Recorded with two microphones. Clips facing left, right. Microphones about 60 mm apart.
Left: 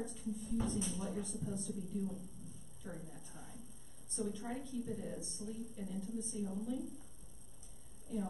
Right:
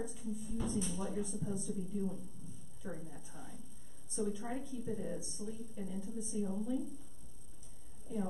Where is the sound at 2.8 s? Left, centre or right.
Centre.